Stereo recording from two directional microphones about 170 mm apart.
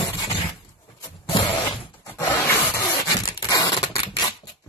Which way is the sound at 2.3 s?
15° left (ahead or behind).